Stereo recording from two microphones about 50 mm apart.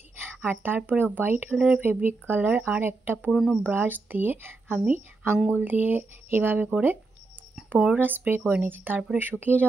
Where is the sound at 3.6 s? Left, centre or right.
Right.